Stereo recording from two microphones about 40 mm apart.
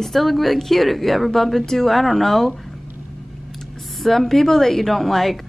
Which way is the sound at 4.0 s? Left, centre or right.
Centre.